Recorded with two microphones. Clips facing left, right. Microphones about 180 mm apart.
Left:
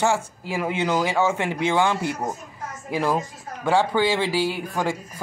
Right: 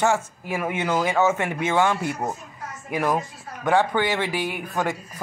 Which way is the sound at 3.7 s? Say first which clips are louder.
Left 1 dB; 10° left (ahead or behind).